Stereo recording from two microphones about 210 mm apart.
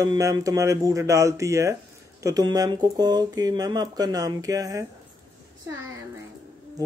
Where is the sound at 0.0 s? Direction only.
15° right (ahead or behind).